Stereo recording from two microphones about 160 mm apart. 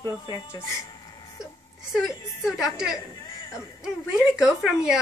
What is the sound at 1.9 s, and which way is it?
Speech, centre (ahead or behind).